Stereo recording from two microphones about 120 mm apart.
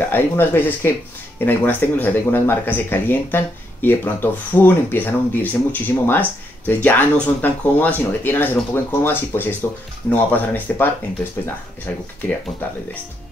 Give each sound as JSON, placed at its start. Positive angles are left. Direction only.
{"t": 0.1, "sound": "speech", "side_deg": 15}